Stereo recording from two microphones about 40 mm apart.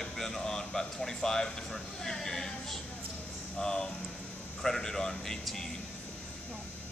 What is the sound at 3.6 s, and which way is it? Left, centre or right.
Speech, centre.